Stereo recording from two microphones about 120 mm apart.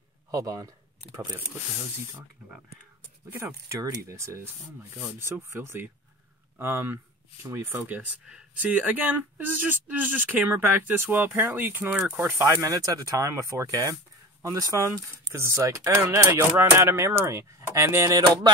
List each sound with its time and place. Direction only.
0.3 s speech: 25° right (ahead or behind)
3.8 s speech: 25° right (ahead or behind)
12.4 s speech: 30° right (ahead or behind)